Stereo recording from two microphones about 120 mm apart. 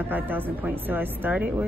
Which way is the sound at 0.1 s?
15° right (ahead or behind).